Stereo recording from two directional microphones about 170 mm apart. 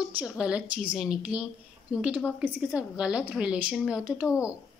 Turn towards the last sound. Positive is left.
turn(degrees=-5)  # may be behind; listen again after turning